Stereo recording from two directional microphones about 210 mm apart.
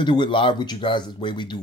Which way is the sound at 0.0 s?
20° left (ahead or behind).